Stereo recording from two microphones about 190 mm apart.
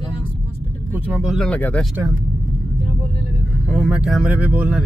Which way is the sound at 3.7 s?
5° right (ahead or behind).